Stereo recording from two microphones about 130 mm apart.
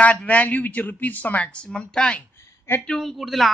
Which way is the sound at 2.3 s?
20° left (ahead or behind).